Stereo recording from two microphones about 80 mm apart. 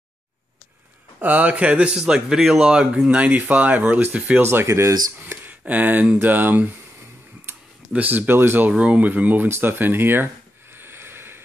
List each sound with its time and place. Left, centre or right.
1.2 s speech: centre; by 4.9 s right
5.2 s speech: right
7.9 s speech: centre
10.7 s a sound: right